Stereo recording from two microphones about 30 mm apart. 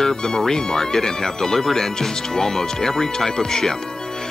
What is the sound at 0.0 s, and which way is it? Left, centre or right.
Speech, left.